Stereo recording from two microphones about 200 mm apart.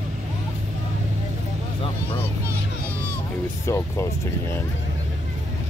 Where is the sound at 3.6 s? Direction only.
15° left (ahead or behind).